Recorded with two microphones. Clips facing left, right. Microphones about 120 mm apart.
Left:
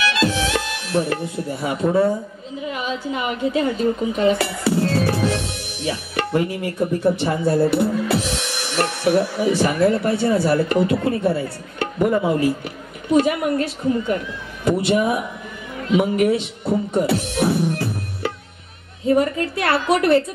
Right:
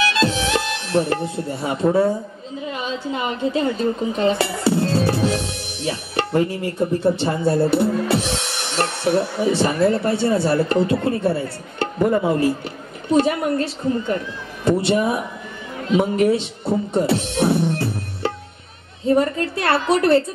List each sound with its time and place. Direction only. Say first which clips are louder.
0.0 s music: right 1 dB; 30° right (ahead or behind)
2.6 s a woman's voice: left 1 dB; 30° right (ahead or behind)